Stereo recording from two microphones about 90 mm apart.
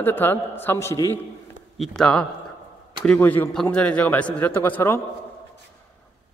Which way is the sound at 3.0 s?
15° left (ahead or behind).